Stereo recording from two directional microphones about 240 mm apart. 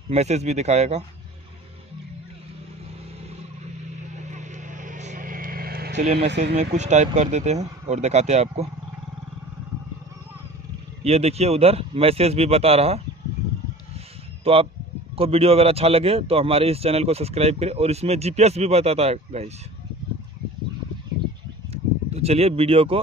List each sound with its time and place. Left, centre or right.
0.1 s a man's voice: right
4.3 s vehicle: right
6.1 s speech: right
6.5 s a man's voice: right
11.1 s a man's voice: right
14.4 s a man's voice: right
22.1 s a man's voice: right